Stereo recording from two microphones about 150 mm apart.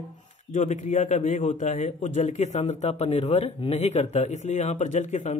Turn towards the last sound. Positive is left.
turn(degrees=50)  # may be behind; listen again after turning